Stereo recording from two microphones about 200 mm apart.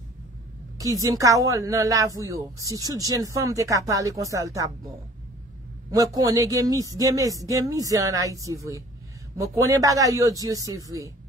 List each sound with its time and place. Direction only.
0.7 s a woman's voice: 15° right (ahead or behind)